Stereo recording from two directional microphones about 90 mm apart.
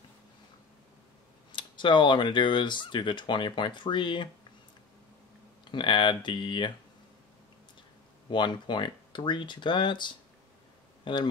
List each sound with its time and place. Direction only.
1.5 s speech: 60° left (ahead or behind)
5.7 s speech: 65° left (ahead or behind)
8.3 s speech: 60° left (ahead or behind)